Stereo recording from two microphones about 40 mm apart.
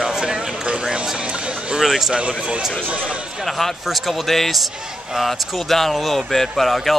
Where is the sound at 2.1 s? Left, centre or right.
Right.